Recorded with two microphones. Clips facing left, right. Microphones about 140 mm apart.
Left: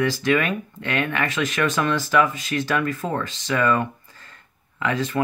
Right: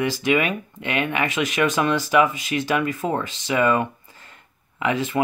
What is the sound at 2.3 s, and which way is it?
Speech, 45° left (ahead or behind).